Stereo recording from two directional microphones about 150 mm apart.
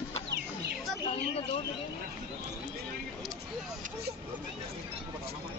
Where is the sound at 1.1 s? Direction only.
40° left (ahead or behind).